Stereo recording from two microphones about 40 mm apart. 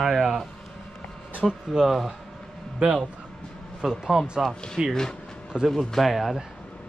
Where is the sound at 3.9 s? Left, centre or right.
Centre.